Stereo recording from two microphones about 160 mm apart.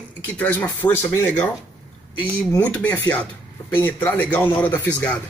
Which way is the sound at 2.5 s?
15° left (ahead or behind).